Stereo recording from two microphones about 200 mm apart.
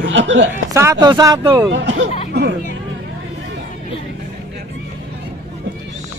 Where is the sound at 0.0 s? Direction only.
65° right (ahead or behind).